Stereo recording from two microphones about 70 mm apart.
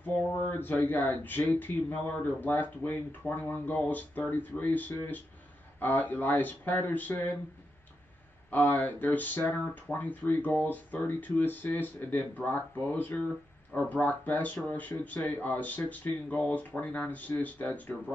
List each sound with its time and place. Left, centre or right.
0.0 s speech: left
8.5 s speech: left